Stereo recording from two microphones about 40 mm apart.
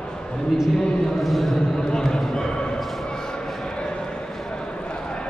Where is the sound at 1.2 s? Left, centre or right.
Centre.